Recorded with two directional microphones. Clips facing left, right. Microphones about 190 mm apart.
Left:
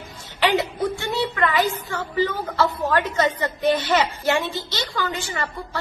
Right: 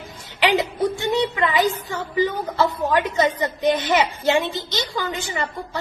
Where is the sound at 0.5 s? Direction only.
20° right (ahead or behind).